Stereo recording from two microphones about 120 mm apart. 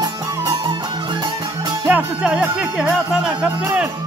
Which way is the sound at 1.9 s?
10° right (ahead or behind).